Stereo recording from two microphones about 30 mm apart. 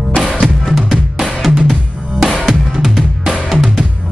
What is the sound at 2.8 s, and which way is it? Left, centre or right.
Drum, centre.